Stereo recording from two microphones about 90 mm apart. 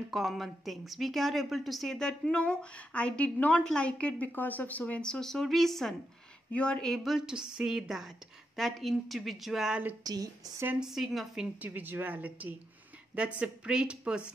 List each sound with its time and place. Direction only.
0.1 s a woman's voice: centre (ahead or behind)
7.0 s a woman's voice: 5° right (ahead or behind)
10.0 s a woman's voice: 45° right (ahead or behind)
10.8 s a woman's voice: 5° right (ahead or behind)
11.6 s a woman's voice: 20° right (ahead or behind)